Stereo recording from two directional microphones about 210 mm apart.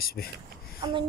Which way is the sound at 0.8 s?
20° right (ahead or behind).